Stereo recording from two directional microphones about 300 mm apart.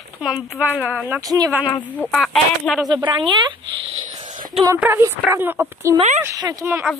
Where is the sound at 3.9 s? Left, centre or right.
Centre.